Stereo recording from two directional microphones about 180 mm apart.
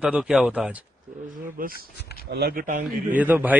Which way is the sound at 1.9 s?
65° left (ahead or behind).